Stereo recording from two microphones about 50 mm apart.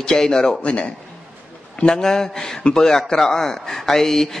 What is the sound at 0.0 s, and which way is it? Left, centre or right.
Speech, centre.